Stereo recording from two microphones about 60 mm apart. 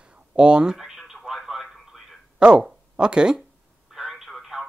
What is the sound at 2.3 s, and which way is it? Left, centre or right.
Speech, centre.